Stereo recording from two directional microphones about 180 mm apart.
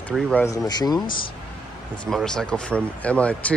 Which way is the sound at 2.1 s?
5° left (ahead or behind).